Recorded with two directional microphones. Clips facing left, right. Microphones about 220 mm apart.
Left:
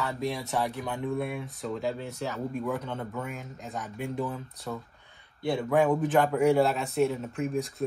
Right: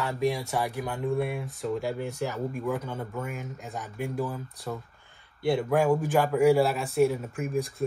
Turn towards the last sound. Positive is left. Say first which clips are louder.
# right 1 dB
turn(degrees=0)  # may be behind; listen again after turning